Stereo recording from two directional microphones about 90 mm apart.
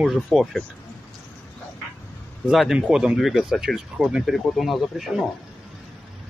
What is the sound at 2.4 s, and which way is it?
Speech, 5° right (ahead or behind).